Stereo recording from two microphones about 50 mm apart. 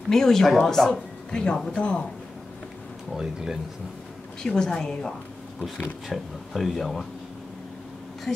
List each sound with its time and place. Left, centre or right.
0.1 s a woman's voice: centre
3.2 s speech: centre
4.4 s a woman's voice: centre
6.0 s speech: centre